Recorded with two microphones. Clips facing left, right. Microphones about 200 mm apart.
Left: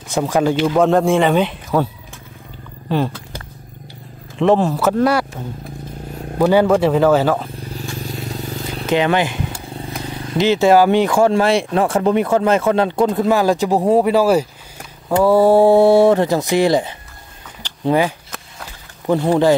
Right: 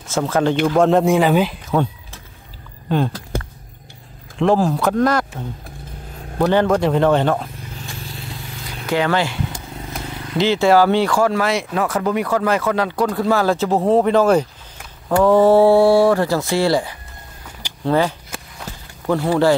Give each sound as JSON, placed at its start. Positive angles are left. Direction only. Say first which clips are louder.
{"t": 0.1, "sound": "speech", "louder": "left 1 dB", "side_deg": 15}
{"t": 0.7, "sound": "speech", "louder": "right 1 dB", "side_deg": 0}
{"t": 4.4, "sound": "speech", "louder": "left 2 dB", "side_deg": 0}
{"t": 6.3, "sound": "speech", "louder": "left 3 dB", "side_deg": 5}
{"t": 8.8, "sound": "speech", "louder": "left 2 dB", "side_deg": 20}